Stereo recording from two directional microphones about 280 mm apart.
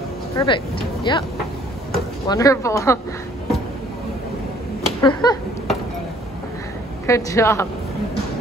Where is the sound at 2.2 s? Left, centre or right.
Centre.